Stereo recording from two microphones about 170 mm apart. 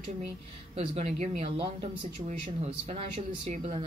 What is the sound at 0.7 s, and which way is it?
A woman's voice, 40° right (ahead or behind).